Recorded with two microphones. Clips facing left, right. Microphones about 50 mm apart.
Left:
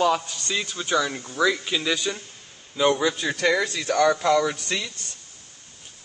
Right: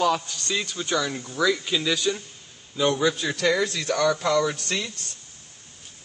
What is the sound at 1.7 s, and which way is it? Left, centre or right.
A man's voice, centre.